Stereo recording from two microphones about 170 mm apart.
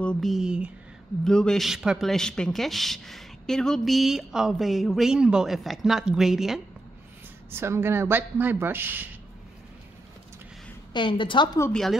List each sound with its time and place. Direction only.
0.0 s speech: 5° left (ahead or behind)
7.5 s speech: 15° right (ahead or behind)
10.9 s a woman's voice: 30° left (ahead or behind)
11.7 s speech: centre (ahead or behind)